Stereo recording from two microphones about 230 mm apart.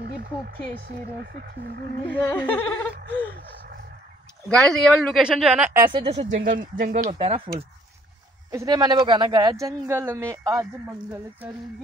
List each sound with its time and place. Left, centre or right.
2.0 s a sound: centre
4.5 s a woman's voice: centre; by 6.2 s right
6.3 s speech: right
8.5 s speech: centre